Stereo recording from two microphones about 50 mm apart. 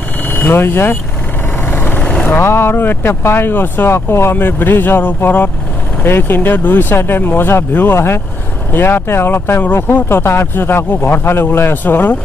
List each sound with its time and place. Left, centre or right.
0.3 s speech: left
1.7 s vehicle: left
2.0 s vehicle: left
2.2 s speech: left
4.4 s speech: left
11.8 s speech: left